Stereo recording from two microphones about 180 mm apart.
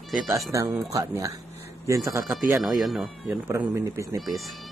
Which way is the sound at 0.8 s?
20° right (ahead or behind).